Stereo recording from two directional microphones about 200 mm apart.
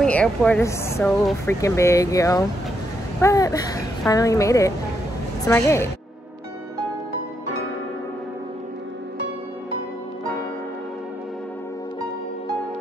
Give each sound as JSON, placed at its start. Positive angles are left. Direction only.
{"t": 0.0, "sound": "a woman's voice", "side_deg": 5}